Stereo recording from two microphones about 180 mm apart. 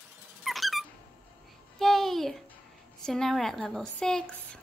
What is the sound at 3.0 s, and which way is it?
A woman's voice, 5° left (ahead or behind).